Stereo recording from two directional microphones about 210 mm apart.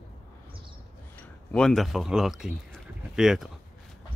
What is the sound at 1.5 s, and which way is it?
Speech, 5° left (ahead or behind).